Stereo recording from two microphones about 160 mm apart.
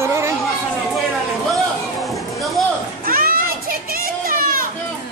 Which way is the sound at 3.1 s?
65° right (ahead or behind).